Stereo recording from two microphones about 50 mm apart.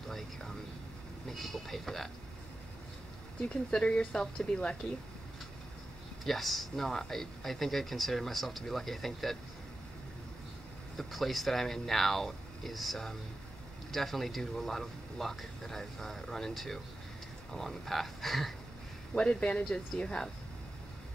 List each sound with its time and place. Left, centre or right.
1.3 s speech: centre
3.7 s speech: left
4.2 s speech: centre
4.8 s speech: left
6.2 s speech: centre
11.0 s speech: centre
19.1 s speech: left